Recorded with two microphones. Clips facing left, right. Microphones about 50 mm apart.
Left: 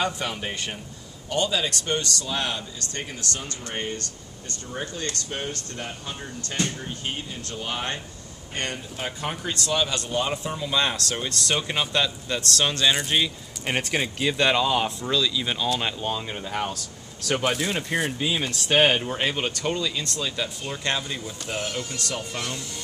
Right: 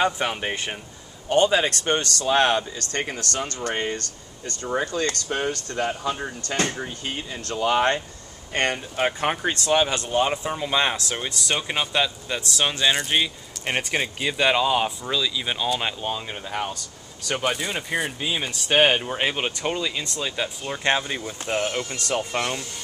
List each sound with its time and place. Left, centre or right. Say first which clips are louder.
0.0 s speech: right 4 dB; right
8.5 s speech: right 7 dB; right